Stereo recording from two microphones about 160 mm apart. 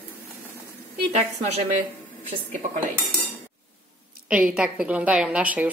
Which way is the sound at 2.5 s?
50° right (ahead or behind).